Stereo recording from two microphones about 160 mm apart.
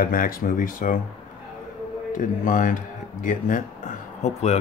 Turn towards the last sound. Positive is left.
turn(degrees=40)  # may be behind; listen again after turning